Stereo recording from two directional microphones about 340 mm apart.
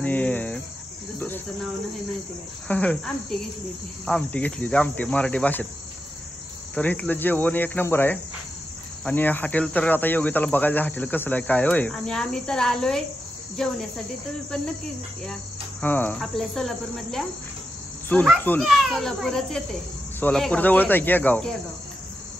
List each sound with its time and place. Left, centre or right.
0.0 s speech: centre
1.2 s cricket: centre
2.7 s speech: centre
6.7 s speech: centre
15.8 s speech: centre